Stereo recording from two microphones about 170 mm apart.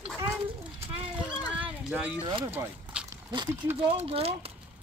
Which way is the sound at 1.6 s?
10° right (ahead or behind).